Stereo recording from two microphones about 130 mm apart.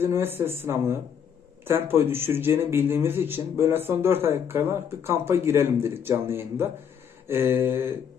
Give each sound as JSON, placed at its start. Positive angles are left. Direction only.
{"t": 0.0, "sound": "speech", "side_deg": -15}